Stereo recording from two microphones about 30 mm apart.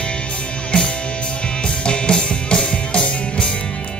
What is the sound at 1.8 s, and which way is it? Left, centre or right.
Music, left.